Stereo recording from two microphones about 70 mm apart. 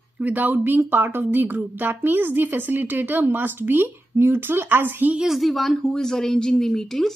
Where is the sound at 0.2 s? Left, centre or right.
Right.